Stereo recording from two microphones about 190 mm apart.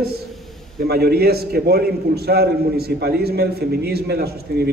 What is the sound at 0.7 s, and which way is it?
A man's voice, 55° right (ahead or behind).